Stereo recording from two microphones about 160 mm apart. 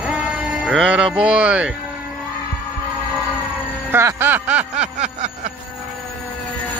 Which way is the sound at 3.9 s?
15° right (ahead or behind).